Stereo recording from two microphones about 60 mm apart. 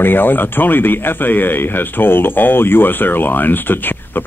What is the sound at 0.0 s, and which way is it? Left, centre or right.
Speech, left.